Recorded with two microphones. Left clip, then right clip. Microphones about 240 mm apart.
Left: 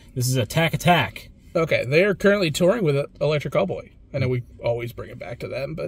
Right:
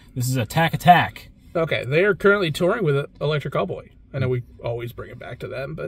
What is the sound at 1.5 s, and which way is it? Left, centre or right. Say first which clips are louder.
Speech: left 2 dB; centre.